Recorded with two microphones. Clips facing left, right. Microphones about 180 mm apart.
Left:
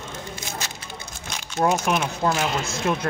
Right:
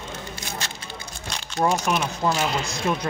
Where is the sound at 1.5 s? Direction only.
5° left (ahead or behind).